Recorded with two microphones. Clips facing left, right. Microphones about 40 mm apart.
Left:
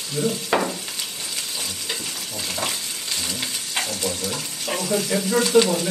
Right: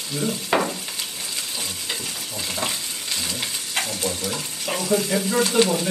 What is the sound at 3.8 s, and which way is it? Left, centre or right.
Frying, right.